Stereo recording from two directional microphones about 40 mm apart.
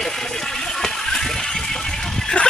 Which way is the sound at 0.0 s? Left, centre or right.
Centre.